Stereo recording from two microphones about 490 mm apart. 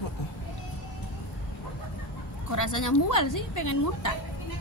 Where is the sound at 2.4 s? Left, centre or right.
Left.